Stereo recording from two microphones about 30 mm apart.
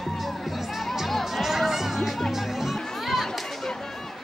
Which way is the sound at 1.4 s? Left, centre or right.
Centre.